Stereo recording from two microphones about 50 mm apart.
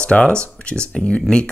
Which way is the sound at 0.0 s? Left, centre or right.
Left.